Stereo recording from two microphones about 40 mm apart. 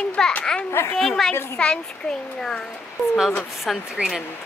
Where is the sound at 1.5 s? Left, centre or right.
Left.